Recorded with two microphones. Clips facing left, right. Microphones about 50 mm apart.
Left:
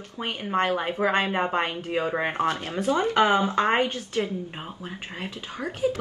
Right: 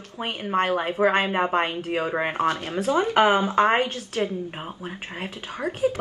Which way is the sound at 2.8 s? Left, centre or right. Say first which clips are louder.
Right 2 dB; right.